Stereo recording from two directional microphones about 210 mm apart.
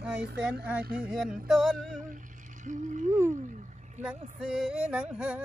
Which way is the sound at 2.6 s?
35° right (ahead or behind).